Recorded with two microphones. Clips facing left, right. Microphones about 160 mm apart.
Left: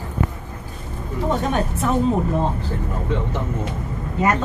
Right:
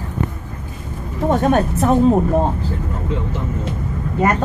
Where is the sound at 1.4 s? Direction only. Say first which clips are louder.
Right 6 dB; 50° right (ahead or behind).